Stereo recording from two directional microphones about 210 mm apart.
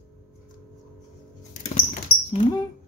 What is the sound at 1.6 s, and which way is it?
Rodents, 30° left (ahead or behind).